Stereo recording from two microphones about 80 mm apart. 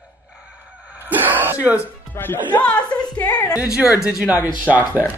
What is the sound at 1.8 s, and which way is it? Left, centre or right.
Speech, left.